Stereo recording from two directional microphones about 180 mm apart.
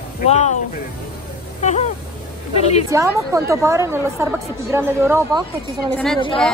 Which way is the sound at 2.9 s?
15° right (ahead or behind).